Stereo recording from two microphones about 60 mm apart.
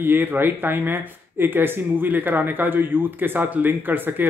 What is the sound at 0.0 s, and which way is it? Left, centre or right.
Speech, right.